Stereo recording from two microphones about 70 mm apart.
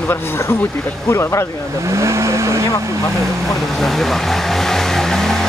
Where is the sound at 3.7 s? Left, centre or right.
Centre.